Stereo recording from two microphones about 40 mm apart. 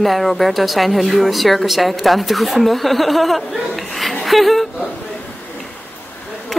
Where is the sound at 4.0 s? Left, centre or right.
Centre.